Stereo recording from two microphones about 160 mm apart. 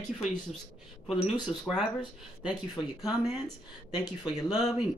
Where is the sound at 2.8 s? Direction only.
25° left (ahead or behind).